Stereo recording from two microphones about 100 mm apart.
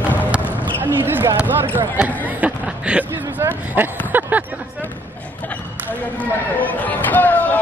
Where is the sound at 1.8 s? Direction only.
15° right (ahead or behind).